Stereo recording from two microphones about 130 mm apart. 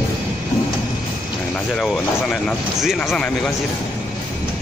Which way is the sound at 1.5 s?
5° left (ahead or behind).